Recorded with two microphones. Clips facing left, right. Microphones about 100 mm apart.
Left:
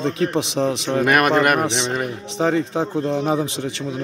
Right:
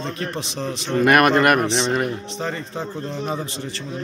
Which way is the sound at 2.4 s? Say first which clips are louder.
Left 10 dB; 90° left.